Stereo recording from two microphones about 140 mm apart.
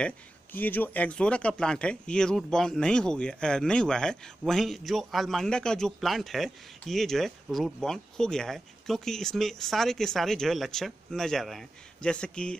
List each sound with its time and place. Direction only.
0.0 s speech: 15° left (ahead or behind)